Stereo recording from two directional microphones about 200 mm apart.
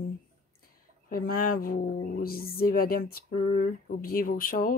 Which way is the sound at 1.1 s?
45° left (ahead or behind).